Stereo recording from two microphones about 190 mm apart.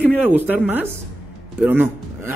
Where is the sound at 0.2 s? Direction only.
10° right (ahead or behind).